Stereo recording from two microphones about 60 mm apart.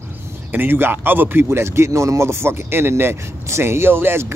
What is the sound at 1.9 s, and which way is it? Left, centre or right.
Speech, right.